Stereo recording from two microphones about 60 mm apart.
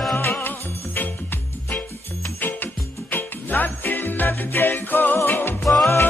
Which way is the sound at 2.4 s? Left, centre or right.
Left.